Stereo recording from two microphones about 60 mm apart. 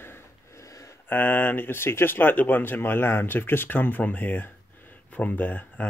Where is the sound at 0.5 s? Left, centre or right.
Left.